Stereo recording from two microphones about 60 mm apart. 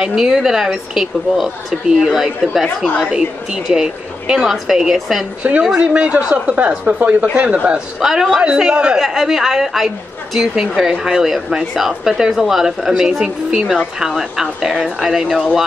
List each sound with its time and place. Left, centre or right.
0.0 s a woman's voice: centre
5.4 s speech: right
8.0 s a woman's voice: centre
8.4 s speech: centre
9.0 s a woman's voice: centre